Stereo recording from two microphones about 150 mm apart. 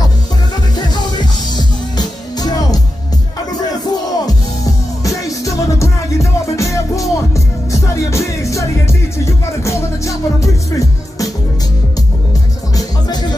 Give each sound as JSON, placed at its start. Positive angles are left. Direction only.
{"t": 0.7, "sound": "music", "side_deg": 30}
{"t": 3.8, "sound": "music", "side_deg": 25}
{"t": 12.7, "sound": "music", "side_deg": 25}